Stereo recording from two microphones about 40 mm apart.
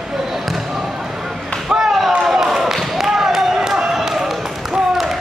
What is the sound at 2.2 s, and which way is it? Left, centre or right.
Basketball bounce, centre.